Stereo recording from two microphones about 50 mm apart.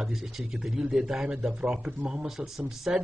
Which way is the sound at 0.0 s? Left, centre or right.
Centre.